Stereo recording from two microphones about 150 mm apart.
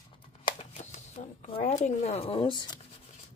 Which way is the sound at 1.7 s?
50° left (ahead or behind).